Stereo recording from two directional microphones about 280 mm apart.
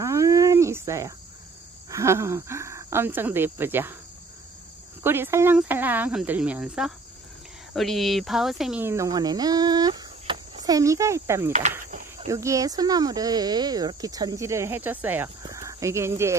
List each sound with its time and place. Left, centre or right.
0.0 s cricket: centre
1.9 s speech: centre
5.0 s speech: centre
11.8 s cricket: right
12.3 s speech: centre